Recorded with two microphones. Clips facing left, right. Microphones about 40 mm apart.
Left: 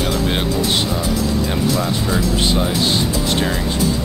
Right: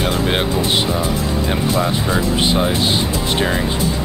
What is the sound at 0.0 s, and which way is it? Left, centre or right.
Speech, right.